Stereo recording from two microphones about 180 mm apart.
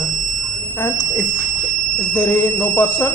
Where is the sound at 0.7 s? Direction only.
20° left (ahead or behind).